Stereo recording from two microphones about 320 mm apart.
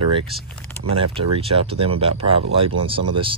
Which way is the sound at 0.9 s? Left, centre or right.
Centre.